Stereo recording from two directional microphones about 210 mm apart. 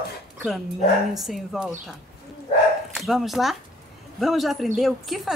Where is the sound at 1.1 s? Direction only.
Centre (ahead or behind).